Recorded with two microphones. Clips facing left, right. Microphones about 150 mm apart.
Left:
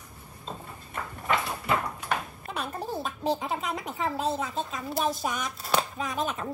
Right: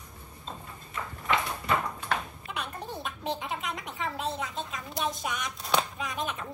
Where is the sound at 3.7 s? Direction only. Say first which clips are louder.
Left 4 dB; 40° left (ahead or behind).